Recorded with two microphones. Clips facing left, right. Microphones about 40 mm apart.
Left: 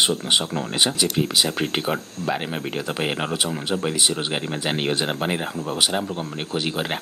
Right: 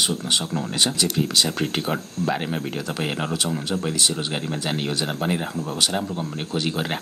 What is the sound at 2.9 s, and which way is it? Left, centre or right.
Speech, centre.